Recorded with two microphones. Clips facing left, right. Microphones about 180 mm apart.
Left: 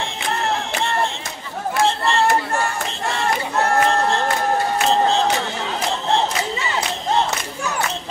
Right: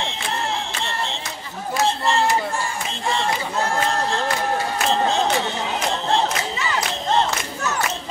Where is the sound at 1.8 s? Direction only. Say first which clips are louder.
Left 2 dB; 60° left (ahead or behind).